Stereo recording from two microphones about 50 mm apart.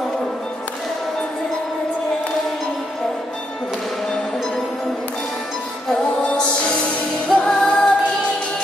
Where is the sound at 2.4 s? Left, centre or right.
Centre.